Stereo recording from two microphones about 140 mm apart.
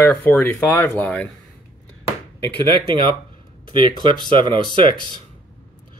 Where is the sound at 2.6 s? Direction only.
40° right (ahead or behind).